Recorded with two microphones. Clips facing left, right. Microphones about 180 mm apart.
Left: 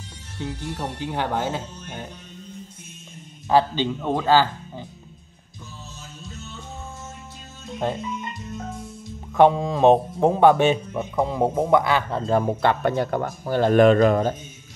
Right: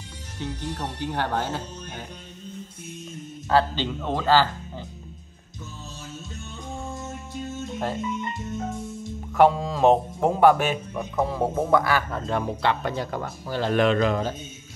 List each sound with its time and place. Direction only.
0.4 s speech: 15° left (ahead or behind)
3.4 s speech: 15° left (ahead or behind)
7.8 s speech: 20° left (ahead or behind)
9.3 s speech: 20° left (ahead or behind)
12.3 s speech: 40° left (ahead or behind)
12.8 s speech: 55° left (ahead or behind)